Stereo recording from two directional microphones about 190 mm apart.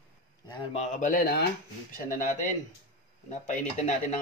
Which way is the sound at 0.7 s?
40° left (ahead or behind).